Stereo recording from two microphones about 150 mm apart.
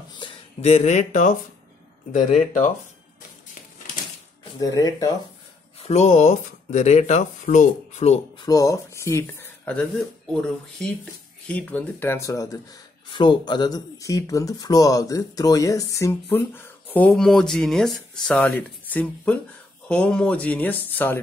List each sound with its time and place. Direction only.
0.1 s speech: 35° left (ahead or behind); by 2.7 s 55° left (ahead or behind)
4.6 s speech: 25° left (ahead or behind)
5.8 s speech: 45° left (ahead or behind)
8.5 s speech: 25° left (ahead or behind)
9.7 s speech: 5° left (ahead or behind)
13.1 s speech: 30° left (ahead or behind); by 21.2 s 10° left (ahead or behind)